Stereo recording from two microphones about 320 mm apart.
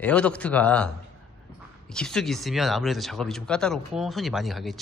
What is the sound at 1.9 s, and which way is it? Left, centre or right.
Speech, centre.